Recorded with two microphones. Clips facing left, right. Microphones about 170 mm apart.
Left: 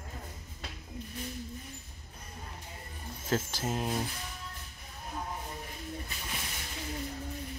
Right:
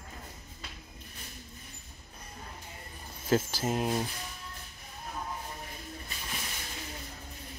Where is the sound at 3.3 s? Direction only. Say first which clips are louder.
Right 4 dB; 5° right (ahead or behind).